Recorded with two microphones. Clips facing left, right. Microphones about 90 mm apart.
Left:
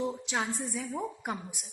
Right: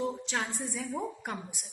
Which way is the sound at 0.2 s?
10° left (ahead or behind).